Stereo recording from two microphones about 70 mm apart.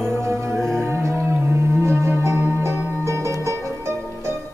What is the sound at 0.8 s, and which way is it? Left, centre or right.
Music, right.